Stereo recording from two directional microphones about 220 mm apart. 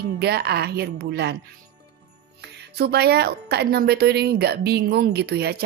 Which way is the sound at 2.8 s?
45° right (ahead or behind).